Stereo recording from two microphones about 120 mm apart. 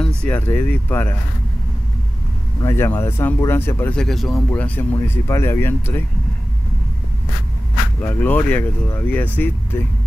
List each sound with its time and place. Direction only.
0.2 s speech: 15° left (ahead or behind)
2.6 s speech: 20° left (ahead or behind)
3.9 s speech: 5° left (ahead or behind)
4.5 s speech: 15° left (ahead or behind)
8.0 s speech: 15° left (ahead or behind)